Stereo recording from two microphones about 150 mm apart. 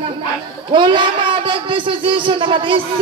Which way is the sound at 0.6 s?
35° right (ahead or behind).